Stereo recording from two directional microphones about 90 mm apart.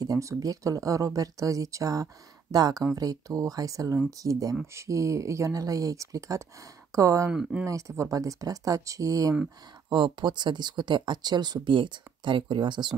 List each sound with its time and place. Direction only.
0.0 s speech: 40° right (ahead or behind)
7.2 s speech: 10° right (ahead or behind)
7.6 s speech: 35° right (ahead or behind)
9.8 s speech: 60° right (ahead or behind)